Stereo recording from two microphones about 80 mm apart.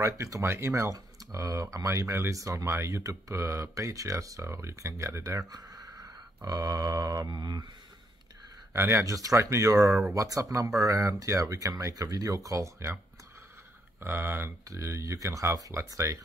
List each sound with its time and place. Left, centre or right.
0.0 s speech: right
5.5 s a sound: right
8.7 s speech: right